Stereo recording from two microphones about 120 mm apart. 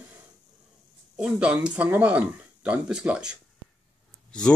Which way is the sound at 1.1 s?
10° right (ahead or behind).